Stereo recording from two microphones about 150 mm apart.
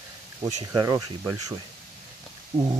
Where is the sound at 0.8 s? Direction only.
30° right (ahead or behind).